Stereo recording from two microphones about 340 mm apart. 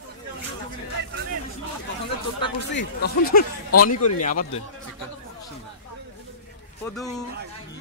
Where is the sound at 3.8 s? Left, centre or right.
Left.